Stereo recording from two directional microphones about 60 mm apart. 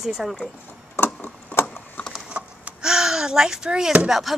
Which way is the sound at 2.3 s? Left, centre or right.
Right.